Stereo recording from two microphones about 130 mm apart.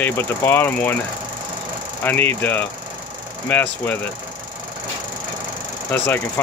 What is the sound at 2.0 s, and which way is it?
Speech, 15° left (ahead or behind).